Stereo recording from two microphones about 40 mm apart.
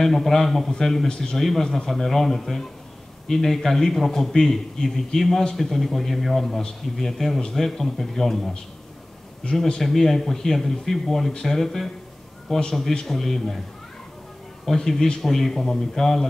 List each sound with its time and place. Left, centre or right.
0.0 s a man's voice: centre
1.4 s a man's voice: centre
12.5 s a man's voice: left
13.0 s speech: centre
14.7 s a man's voice: centre